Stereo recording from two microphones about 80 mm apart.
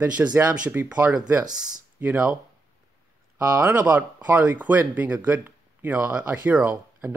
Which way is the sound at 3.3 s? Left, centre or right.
Centre.